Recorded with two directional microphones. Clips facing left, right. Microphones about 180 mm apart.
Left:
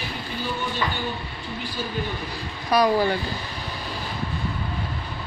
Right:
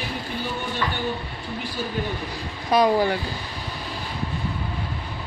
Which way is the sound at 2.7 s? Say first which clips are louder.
Right 1 dB; 20° right (ahead or behind).